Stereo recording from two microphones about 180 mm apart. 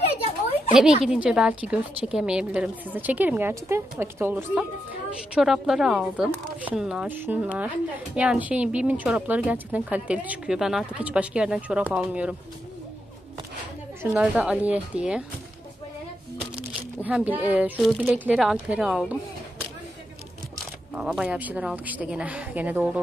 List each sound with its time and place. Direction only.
0.2 s a sound: 35° left (ahead or behind)
1.0 s speech: 5° right (ahead or behind)
14.1 s speech: 5° right (ahead or behind)
17.0 s speech: 10° right (ahead or behind)
20.9 s speech: 5° right (ahead or behind)